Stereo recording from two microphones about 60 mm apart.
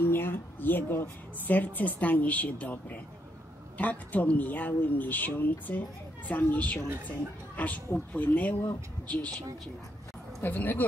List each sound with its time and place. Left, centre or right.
0.0 s speech: left
10.4 s speech: left